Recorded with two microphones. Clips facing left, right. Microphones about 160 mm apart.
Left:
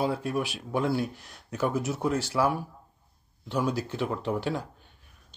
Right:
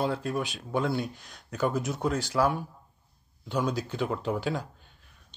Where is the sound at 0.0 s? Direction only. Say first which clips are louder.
Left 1 dB; 5° left (ahead or behind).